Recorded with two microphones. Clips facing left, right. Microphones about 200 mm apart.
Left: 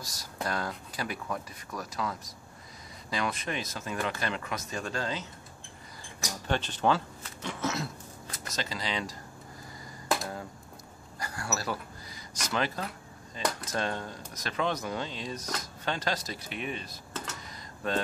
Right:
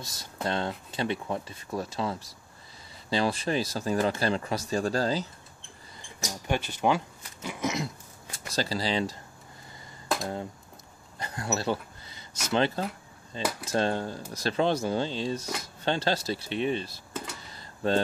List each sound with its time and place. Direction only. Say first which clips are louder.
0.0 s speech: right 3 dB; 25° right (ahead or behind)
6.4 s speech: right 1 dB; 10° right (ahead or behind)
8.3 s speech: right 6 dB; 30° right (ahead or behind)
11.1 s a sound: right 4 dB; 20° right (ahead or behind)
12.4 s speech: right 5 dB; 30° right (ahead or behind)
13.4 s speech: right 1 dB; 5° right (ahead or behind)
13.7 s speech: right 6 dB; 30° right (ahead or behind)
17.4 s a sound: right 6 dB; 30° right (ahead or behind)